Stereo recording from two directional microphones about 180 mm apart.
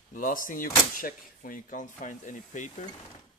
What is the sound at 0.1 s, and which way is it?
Speech, 50° left (ahead or behind).